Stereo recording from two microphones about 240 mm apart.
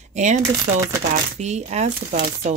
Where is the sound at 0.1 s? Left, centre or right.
Right.